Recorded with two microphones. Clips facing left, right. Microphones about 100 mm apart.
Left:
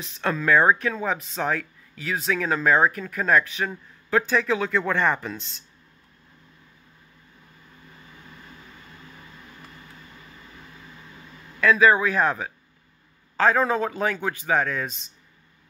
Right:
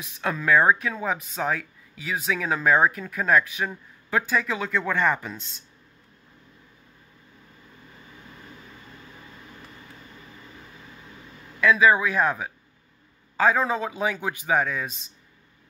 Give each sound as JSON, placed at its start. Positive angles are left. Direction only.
{"t": 0.0, "sound": "speech", "side_deg": -10}
{"t": 11.6, "sound": "speech", "side_deg": -5}